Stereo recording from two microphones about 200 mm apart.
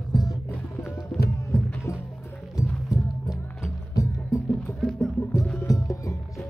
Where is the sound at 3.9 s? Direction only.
15° left (ahead or behind).